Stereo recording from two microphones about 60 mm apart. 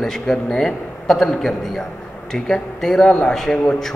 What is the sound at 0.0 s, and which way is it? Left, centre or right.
A man's voice, centre.